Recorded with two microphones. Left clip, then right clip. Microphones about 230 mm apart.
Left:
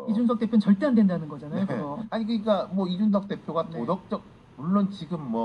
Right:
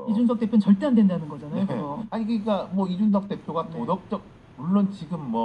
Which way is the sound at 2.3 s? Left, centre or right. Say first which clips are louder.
Left 1 dB; left.